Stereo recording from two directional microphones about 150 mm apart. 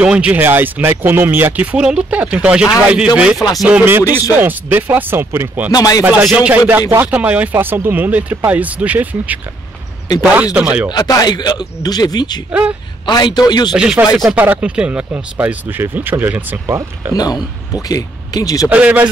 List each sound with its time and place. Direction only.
0.0 s speech: 10° right (ahead or behind)
4.0 s speech: 25° left (ahead or behind)
4.4 s speech: 10° right (ahead or behind)
5.7 s speech: 25° left (ahead or behind)
6.0 s speech: 5° right (ahead or behind)
10.9 s speech: 25° left (ahead or behind)
13.7 s speech: 5° right (ahead or behind)
17.1 s speech: 25° left (ahead or behind)
18.7 s speech: 10° right (ahead or behind)